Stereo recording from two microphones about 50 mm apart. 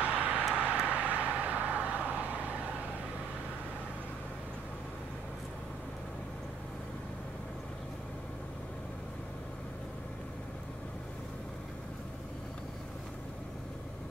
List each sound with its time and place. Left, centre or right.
0.0 s vehicle: right